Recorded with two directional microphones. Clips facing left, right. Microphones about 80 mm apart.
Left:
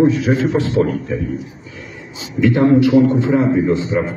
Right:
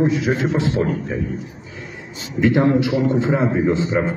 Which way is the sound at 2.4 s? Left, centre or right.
Right.